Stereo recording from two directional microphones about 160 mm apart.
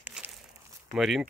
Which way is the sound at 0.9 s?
Centre (ahead or behind).